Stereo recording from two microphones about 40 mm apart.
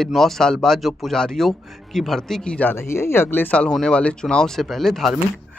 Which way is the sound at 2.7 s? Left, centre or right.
Left.